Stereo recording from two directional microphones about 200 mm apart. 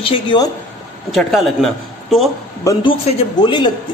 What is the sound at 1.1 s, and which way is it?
Speech, centre (ahead or behind).